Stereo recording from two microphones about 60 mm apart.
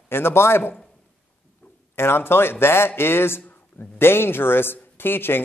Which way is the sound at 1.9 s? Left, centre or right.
Left.